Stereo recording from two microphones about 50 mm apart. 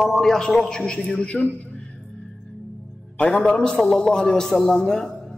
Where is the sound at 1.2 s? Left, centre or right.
Left.